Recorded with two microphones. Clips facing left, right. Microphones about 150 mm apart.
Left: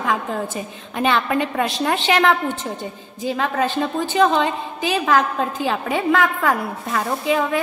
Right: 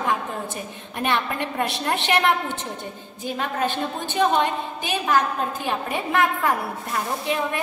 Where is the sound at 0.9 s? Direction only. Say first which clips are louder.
Left 5 dB; 90° left.